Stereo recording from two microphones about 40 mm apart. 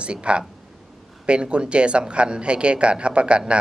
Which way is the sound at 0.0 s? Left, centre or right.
Right.